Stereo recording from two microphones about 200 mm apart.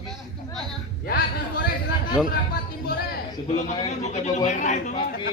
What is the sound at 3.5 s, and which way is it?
A man's voice, 35° left (ahead or behind).